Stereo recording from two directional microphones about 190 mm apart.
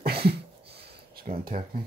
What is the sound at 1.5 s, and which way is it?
Speech, 50° right (ahead or behind).